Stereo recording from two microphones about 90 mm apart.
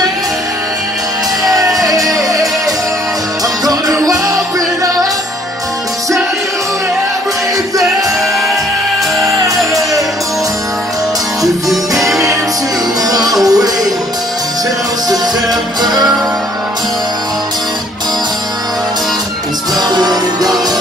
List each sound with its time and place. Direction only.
3.6 s music: 45° right (ahead or behind)
12.0 s music: centre (ahead or behind)
13.4 s music: 45° right (ahead or behind)